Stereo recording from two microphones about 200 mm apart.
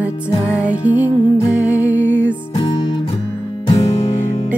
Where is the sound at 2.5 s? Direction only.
25° left (ahead or behind).